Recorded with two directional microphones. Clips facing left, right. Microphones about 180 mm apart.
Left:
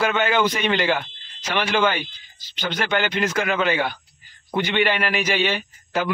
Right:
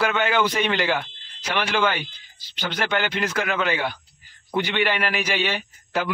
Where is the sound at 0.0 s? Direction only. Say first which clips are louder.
Left 1 dB; 5° right (ahead or behind).